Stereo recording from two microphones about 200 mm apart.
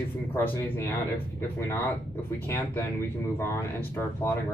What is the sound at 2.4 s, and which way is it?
Speech, 10° left (ahead or behind).